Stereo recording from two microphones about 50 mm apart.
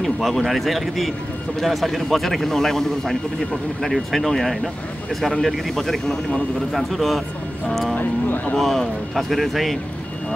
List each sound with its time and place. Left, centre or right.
0.0 s a man's voice: centre
7.9 s speech: left
8.5 s a man's voice: centre